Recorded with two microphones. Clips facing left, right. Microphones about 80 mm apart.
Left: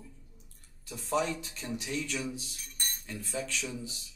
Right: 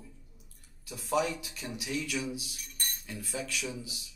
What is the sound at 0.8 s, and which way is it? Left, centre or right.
A man's voice, left.